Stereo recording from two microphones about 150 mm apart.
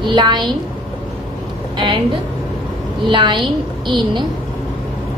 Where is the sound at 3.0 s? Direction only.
35° right (ahead or behind).